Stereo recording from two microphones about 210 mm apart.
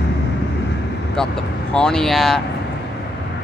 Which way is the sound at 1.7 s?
5° left (ahead or behind).